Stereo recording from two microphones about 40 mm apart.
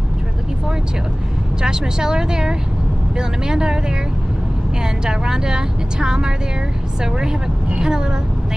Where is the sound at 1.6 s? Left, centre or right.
Centre.